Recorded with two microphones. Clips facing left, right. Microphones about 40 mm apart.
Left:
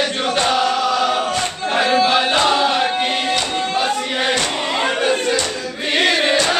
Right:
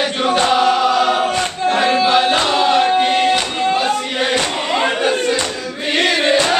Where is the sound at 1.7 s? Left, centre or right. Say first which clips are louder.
Right 1 dB; centre.